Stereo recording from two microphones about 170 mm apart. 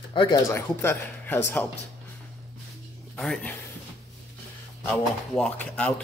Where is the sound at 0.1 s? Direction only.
30° left (ahead or behind).